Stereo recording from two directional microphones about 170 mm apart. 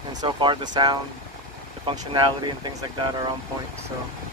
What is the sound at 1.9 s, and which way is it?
Speech, 25° right (ahead or behind).